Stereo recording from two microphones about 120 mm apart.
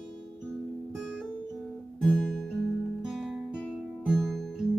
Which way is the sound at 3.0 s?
Centre (ahead or behind).